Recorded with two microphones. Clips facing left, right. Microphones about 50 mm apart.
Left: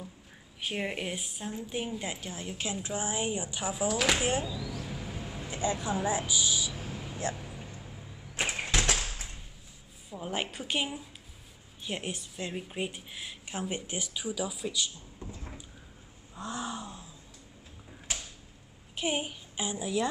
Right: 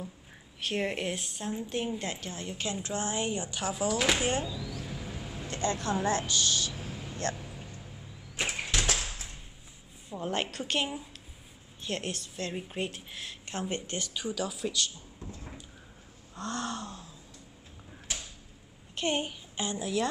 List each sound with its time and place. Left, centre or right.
0.6 s a woman's voice: centre
6.7 s vehicle: centre
8.4 s a sound: centre
10.0 s a woman's voice: centre
12.5 s speech: centre
18.9 s a child's voice: centre